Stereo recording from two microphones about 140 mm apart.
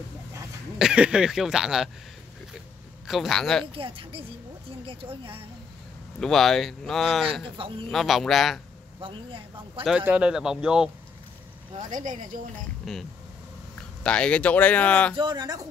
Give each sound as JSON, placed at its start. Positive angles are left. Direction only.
{"t": 0.7, "sound": "speech", "side_deg": -5}
{"t": 3.1, "sound": "speech", "side_deg": 0}
{"t": 3.7, "sound": "a woman's voice", "side_deg": -40}
{"t": 6.1, "sound": "speech", "side_deg": 0}
{"t": 7.4, "sound": "speech", "side_deg": -40}
{"t": 7.9, "sound": "speech", "side_deg": 0}
{"t": 9.0, "sound": "speech", "side_deg": -40}
{"t": 9.8, "sound": "speech", "side_deg": -10}
{"t": 11.9, "sound": "speech", "side_deg": -65}
{"t": 12.8, "sound": "speech", "side_deg": 0}
{"t": 15.1, "sound": "speech", "side_deg": -30}